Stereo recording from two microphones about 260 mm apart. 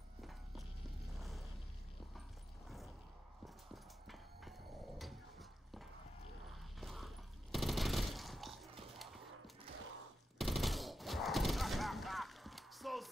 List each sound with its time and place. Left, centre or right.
0.2 s clip-clop: centre
3.4 s horse: centre
6.5 s a sound: centre
9.7 s mechanisms: right
10.3 s gunshot: centre